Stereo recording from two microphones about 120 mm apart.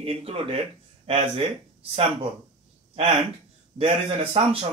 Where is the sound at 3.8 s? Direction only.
55° right (ahead or behind).